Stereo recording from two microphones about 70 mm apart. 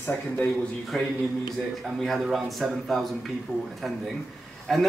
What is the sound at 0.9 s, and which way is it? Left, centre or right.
Speech, centre.